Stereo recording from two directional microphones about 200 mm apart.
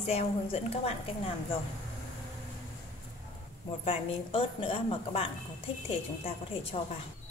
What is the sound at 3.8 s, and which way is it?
A woman's voice, 30° left (ahead or behind).